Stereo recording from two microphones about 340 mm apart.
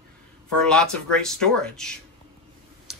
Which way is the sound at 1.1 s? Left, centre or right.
Centre.